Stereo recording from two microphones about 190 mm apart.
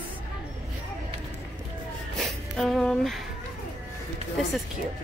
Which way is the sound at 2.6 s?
Centre (ahead or behind).